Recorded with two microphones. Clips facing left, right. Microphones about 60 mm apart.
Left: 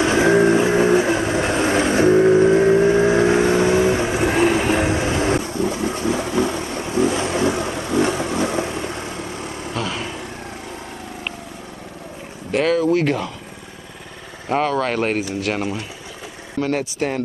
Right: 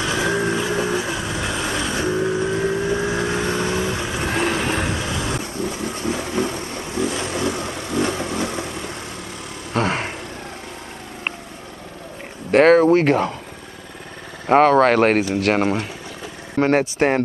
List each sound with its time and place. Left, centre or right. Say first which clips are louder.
0.0 s vehicle: left 6 dB; left
4.2 s vehicle: left 2 dB; centre
4.9 s vehicle: left 6 dB; left
9.8 s vehicle: right 6 dB; right
12.4 s a sound: right 5 dB; right
14.5 s speech: right 7 dB; right